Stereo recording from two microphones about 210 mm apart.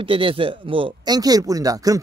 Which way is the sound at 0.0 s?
25° right (ahead or behind).